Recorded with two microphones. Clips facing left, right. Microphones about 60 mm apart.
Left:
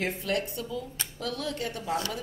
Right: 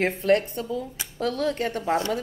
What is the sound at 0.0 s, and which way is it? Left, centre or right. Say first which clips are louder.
A woman's voice: right 8 dB; right.